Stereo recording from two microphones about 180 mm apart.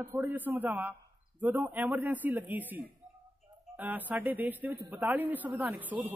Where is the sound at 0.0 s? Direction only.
10° right (ahead or behind).